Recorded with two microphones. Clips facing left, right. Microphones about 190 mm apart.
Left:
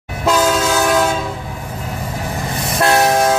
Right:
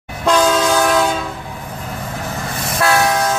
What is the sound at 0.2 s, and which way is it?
Train, 5° left (ahead or behind).